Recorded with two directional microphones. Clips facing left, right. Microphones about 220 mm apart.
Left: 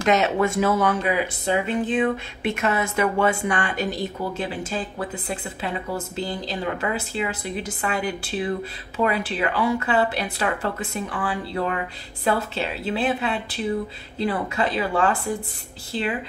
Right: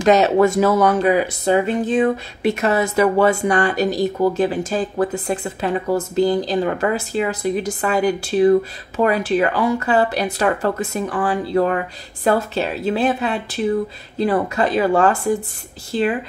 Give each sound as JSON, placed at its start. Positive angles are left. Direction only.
{"t": 0.0, "sound": "speech", "side_deg": -35}